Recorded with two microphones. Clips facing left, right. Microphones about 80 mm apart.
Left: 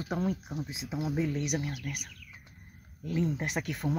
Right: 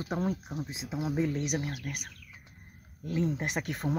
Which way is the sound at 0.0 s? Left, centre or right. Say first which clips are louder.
Even; right.